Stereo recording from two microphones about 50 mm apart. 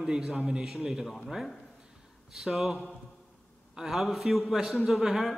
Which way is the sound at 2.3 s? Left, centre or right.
Centre.